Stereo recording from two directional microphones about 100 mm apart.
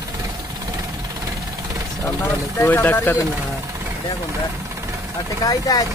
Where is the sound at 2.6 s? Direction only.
20° left (ahead or behind).